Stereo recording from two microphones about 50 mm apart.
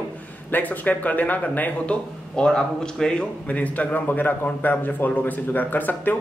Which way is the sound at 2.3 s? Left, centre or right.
Centre.